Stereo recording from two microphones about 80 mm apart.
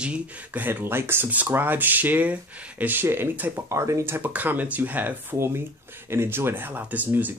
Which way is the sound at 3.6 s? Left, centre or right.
Right.